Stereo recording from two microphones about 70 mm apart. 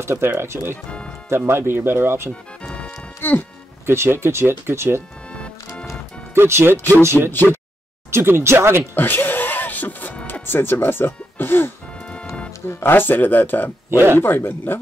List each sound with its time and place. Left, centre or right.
0.0 s speech: right
2.6 s music: centre
3.2 s speech: left
3.8 s speech: right
6.3 s speech: right
8.9 s music: left
10.4 s speech: left
13.8 s speech: right
14.2 s speech: left